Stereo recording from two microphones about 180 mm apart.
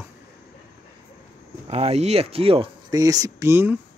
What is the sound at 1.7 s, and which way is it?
Speech, 35° right (ahead or behind).